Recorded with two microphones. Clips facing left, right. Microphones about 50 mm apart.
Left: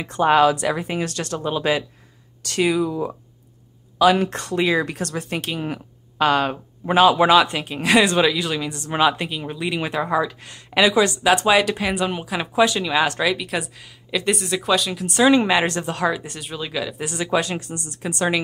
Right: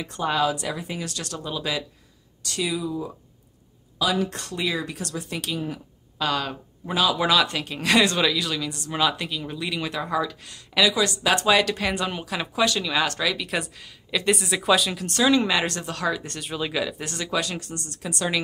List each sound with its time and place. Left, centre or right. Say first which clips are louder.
0.0 s speech: left 7 dB; left
0.7 s speech: left 7 dB; left
2.4 s speech: left 7 dB; left
4.4 s speech: left 7 dB; left
11.2 s speech: left 1 dB; centre
13.4 s speech: left 2 dB; centre
15.0 s speech: left 5 dB; centre
16.2 s speech: right 1 dB; centre
17.0 s speech: left 5 dB; centre
17.3 s speech: left 5 dB; left